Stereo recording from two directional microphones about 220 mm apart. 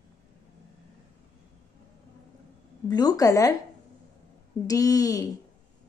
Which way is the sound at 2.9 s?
15° left (ahead or behind).